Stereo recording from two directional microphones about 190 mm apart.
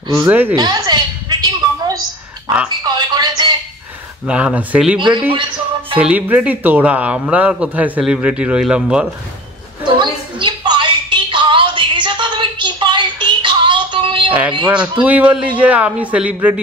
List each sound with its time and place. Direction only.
0.1 s speech: 15° right (ahead or behind)
0.6 s a sound: 20° right (ahead or behind)
2.8 s music: 20° right (ahead or behind)
4.3 s speech: 5° right (ahead or behind)
4.9 s a man's voice: 25° right (ahead or behind)
5.9 s speech: 10° right (ahead or behind)
9.9 s a sound: 25° right (ahead or behind)
14.7 s speech: 5° right (ahead or behind)